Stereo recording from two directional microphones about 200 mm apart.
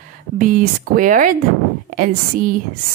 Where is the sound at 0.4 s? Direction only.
45° right (ahead or behind).